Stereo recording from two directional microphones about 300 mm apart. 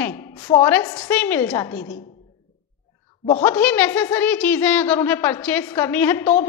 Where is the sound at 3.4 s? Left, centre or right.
Centre.